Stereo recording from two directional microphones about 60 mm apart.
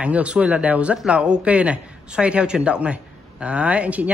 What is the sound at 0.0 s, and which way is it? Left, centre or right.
A man's voice, right.